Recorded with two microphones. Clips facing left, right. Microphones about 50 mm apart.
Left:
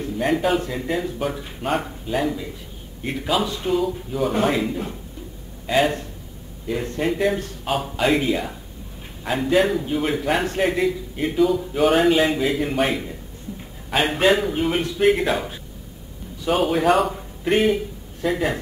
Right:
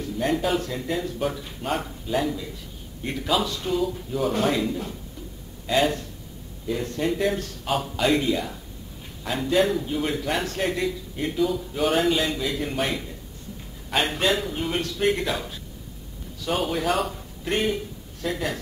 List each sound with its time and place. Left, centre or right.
0.2 s a man's voice: centre
3.8 s a man's voice: centre
6.7 s a man's voice: left
12.3 s a man's voice: left
16.5 s a man's voice: centre